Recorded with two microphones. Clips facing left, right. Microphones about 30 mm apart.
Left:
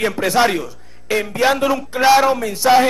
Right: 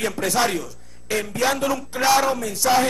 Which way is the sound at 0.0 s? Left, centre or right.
Left.